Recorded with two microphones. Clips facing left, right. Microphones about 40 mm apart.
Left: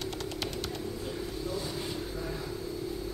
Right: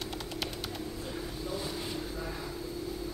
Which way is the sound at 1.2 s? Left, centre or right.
Centre.